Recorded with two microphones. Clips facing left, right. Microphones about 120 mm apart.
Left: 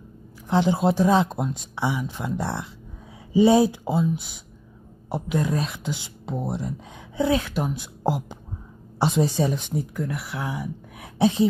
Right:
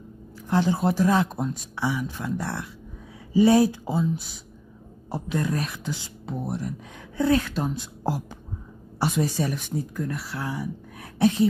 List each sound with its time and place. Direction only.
0.5 s speech: 20° left (ahead or behind)